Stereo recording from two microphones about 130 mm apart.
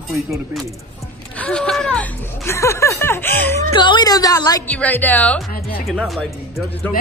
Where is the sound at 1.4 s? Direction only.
10° left (ahead or behind).